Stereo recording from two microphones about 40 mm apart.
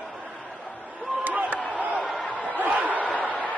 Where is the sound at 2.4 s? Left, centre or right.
Right.